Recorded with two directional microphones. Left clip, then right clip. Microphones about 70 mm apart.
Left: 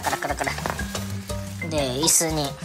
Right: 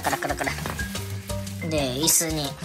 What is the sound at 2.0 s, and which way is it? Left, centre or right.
Speech, left.